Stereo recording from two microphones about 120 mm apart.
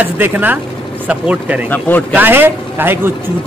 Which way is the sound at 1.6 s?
15° left (ahead or behind).